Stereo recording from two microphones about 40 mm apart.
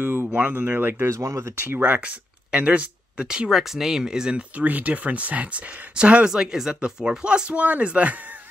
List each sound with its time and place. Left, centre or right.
0.0 s a sound: right
0.4 s speech: right
1.8 s speech: right
3.4 s speech: centre
4.0 s speech: centre
4.6 s speech: right
6.3 s speech: centre
7.5 s speech: right